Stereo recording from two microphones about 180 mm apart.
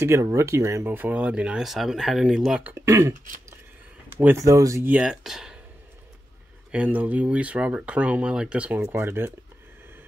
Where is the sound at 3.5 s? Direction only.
10° right (ahead or behind).